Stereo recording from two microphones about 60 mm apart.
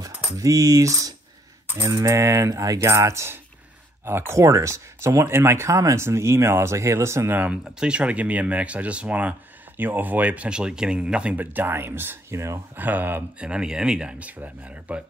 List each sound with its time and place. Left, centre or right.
0.4 s speech: right
4.0 s speech: right
4.4 s speech: right
6.0 s speech: right
7.8 s speech: centre
11.3 s speech: right
12.4 s speech: right
12.7 s speech: right
13.4 s speech: centre
14.1 s speech: right